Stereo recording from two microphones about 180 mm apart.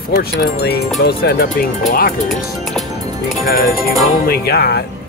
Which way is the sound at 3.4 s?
55° left (ahead or behind).